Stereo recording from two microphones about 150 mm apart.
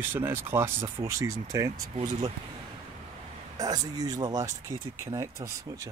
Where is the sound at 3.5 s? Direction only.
25° right (ahead or behind).